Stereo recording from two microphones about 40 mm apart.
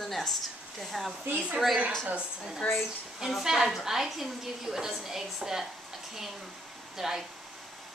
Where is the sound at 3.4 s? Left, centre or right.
Centre.